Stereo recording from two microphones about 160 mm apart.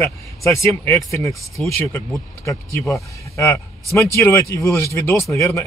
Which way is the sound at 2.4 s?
20° left (ahead or behind).